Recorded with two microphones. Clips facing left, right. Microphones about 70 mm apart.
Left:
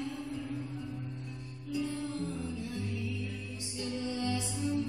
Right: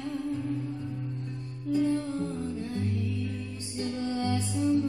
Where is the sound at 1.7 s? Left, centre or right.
Right.